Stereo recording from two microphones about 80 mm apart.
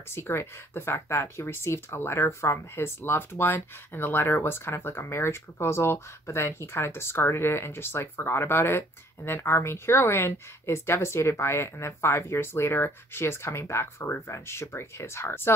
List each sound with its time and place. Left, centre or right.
0.1 s speech: left